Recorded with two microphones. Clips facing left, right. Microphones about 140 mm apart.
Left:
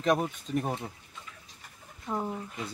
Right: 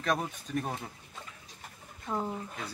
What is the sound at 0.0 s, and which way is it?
Speech, 20° left (ahead or behind).